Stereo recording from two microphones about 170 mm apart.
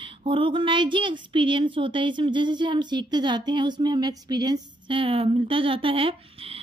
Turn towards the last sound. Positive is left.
turn(degrees=-30)  # may be behind; listen again after turning